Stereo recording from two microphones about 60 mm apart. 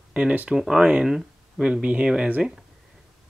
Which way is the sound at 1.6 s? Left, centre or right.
Centre.